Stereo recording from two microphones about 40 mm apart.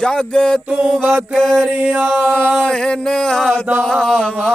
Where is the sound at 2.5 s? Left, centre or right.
Centre.